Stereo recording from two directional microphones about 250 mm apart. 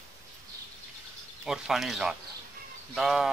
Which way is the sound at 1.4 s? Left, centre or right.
Centre.